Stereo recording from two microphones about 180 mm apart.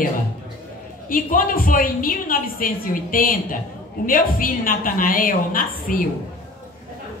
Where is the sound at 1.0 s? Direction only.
50° left (ahead or behind).